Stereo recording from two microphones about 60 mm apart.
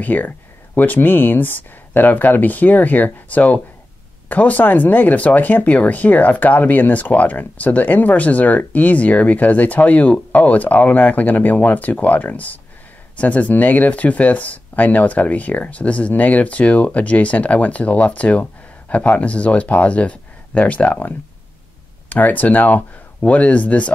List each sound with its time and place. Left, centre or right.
0.0 s speech: left
22.1 s speech: left